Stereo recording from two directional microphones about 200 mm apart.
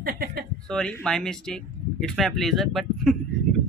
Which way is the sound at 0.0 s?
50° right (ahead or behind).